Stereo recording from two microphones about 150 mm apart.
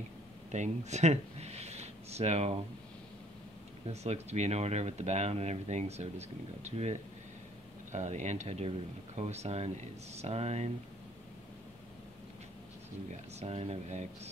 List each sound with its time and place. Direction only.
0.5 s a sound: 50° right (ahead or behind)
3.8 s speech: 45° right (ahead or behind)
13.1 s speech: 45° right (ahead or behind)